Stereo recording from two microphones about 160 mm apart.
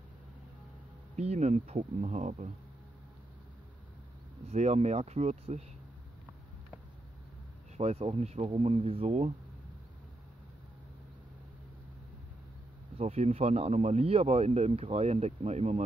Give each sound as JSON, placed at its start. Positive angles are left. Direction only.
{"t": 1.1, "sound": "speech", "side_deg": -45}
{"t": 4.5, "sound": "speech", "side_deg": -45}
{"t": 7.7, "sound": "speech", "side_deg": -40}
{"t": 12.9, "sound": "speech", "side_deg": -40}